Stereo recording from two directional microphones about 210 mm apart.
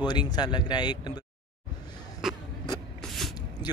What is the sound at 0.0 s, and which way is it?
Speech, 20° left (ahead or behind).